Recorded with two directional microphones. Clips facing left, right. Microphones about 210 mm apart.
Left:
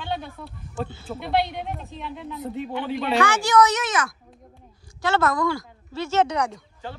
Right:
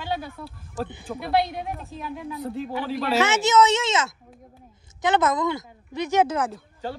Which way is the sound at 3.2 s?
20° right (ahead or behind).